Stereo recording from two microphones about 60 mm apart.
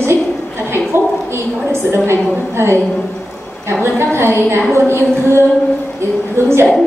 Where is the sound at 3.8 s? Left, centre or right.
Right.